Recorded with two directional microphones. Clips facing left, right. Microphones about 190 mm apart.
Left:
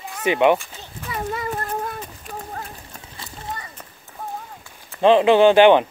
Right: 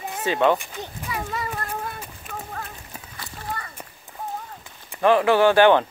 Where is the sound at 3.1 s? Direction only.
25° left (ahead or behind).